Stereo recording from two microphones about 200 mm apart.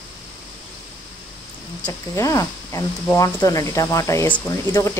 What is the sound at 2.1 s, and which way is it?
Speech, 15° left (ahead or behind).